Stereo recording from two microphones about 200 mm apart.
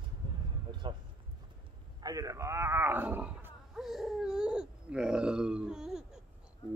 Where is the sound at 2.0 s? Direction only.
15° right (ahead or behind).